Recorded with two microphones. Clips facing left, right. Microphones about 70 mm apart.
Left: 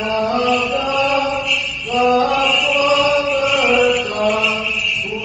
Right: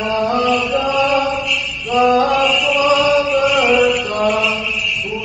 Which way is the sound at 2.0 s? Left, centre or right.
Right.